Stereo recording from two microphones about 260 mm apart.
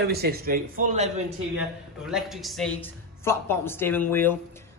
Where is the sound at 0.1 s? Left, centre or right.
Right.